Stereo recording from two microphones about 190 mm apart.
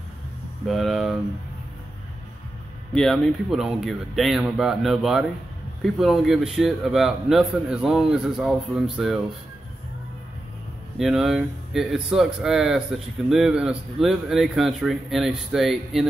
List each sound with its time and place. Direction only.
0.7 s speech: centre (ahead or behind)
2.9 s speech: centre (ahead or behind)
11.0 s speech: centre (ahead or behind)